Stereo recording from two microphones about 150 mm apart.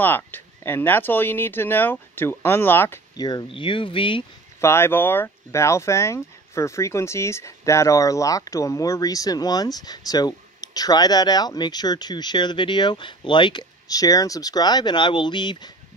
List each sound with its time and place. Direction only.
0.0 s speech: 15° left (ahead or behind)
3.2 s speech: 25° left (ahead or behind)
4.6 s speech: 15° left (ahead or behind)